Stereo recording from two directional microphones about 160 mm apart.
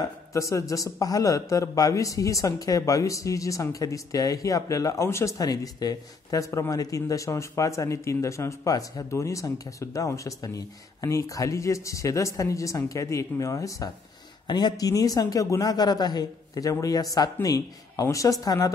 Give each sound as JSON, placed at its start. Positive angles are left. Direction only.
{"t": 0.3, "sound": "a man's voice", "side_deg": 20}